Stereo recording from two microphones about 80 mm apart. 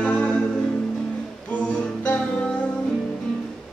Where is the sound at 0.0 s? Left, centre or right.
Centre.